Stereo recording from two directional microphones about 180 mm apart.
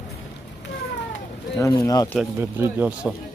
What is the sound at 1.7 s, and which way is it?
Speech, 20° left (ahead or behind).